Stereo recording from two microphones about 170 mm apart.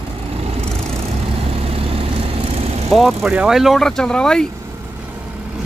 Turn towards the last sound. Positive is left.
turn(degrees=5)  # may be behind; listen again after turning